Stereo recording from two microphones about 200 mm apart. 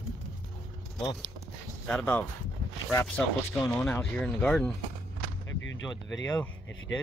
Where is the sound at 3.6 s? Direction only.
5° left (ahead or behind).